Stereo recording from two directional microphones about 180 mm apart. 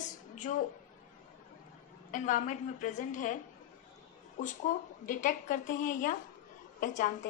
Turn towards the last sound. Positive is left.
turn(degrees=45)  # may be behind; listen again after turning